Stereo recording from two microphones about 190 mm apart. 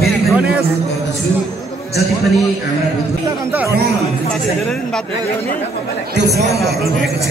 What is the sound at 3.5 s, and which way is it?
Speech, 10° right (ahead or behind).